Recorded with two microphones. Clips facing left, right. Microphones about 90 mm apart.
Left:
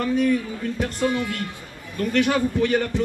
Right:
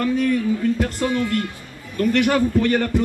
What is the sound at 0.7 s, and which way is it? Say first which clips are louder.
Speech: right 2 dB; centre (ahead or behind).